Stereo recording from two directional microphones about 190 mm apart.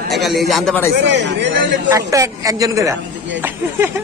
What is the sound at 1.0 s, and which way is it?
Speech, 70° right (ahead or behind).